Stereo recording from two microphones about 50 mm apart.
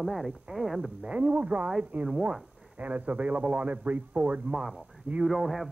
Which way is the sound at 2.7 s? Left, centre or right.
Right.